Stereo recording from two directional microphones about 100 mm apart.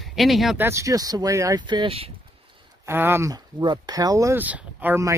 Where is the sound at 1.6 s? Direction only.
50° right (ahead or behind).